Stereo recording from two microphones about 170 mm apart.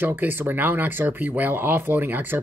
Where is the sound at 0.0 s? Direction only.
10° right (ahead or behind).